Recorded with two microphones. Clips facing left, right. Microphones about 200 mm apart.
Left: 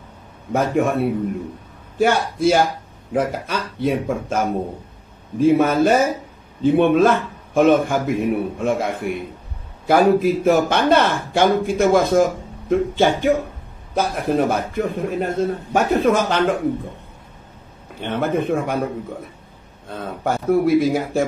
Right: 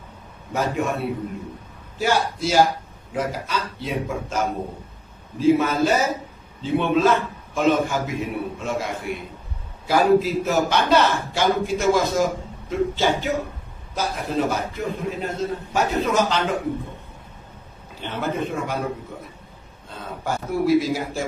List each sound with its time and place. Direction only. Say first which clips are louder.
0.5 s a man's voice: left 5 dB; 55° left (ahead or behind)
5.4 s a man's voice: left 3 dB; 55° left (ahead or behind)
18.0 s a man's voice: left 5 dB; 55° left (ahead or behind)
19.9 s a man's voice: left 5 dB; 55° left (ahead or behind)